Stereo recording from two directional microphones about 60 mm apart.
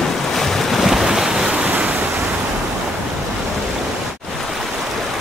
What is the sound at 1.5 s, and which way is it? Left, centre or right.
Waves, centre.